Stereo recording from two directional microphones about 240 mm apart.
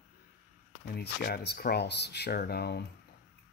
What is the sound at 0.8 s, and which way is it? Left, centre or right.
Speech, left.